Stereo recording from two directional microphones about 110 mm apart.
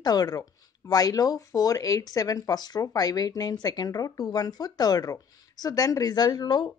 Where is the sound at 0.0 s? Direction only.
35° left (ahead or behind).